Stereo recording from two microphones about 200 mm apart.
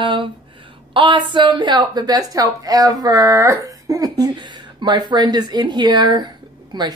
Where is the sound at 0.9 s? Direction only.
25° right (ahead or behind).